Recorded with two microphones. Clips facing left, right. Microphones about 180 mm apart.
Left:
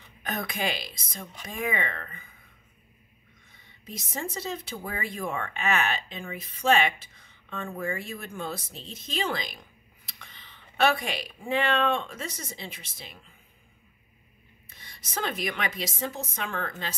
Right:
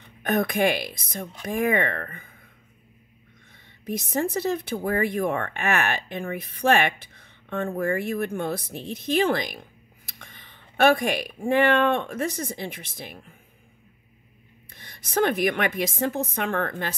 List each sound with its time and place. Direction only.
0.2 s a woman's voice: 55° right (ahead or behind)
3.5 s a woman's voice: 60° right (ahead or behind)
14.7 s a woman's voice: 55° right (ahead or behind)